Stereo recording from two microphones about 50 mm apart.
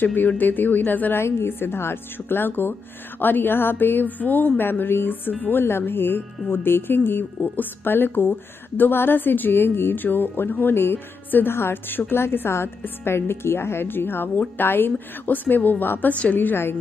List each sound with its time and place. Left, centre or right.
0.0 s speech: left
1.5 s speech: left
5.3 s speech: left
5.6 s speech: left